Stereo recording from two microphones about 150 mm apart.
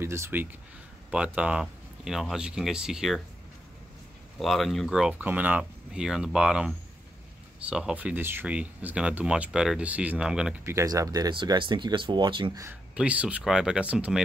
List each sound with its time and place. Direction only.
0.0 s speech: 15° right (ahead or behind)
4.4 s speech: centre (ahead or behind)
10.6 s speech: 20° right (ahead or behind); by 12.5 s 35° right (ahead or behind)
12.9 s speech: 10° right (ahead or behind)